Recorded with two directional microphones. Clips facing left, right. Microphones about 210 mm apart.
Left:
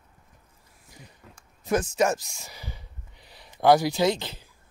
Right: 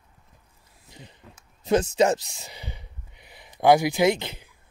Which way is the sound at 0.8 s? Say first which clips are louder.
Right 3 dB; 25° right (ahead or behind).